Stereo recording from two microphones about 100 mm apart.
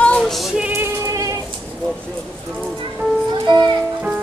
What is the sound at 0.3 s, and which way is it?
Music, centre (ahead or behind).